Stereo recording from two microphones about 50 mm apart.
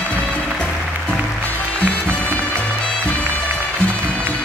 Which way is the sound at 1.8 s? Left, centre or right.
Left.